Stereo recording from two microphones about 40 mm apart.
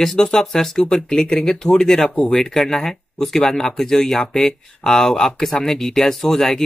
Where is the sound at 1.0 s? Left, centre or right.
Left.